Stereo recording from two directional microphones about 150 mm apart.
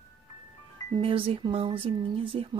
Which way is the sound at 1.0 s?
35° right (ahead or behind).